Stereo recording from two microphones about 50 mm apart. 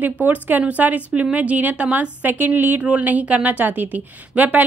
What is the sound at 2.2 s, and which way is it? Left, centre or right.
A woman's voice, right.